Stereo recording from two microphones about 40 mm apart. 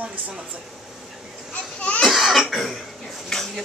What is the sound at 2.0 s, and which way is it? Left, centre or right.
Cough, centre.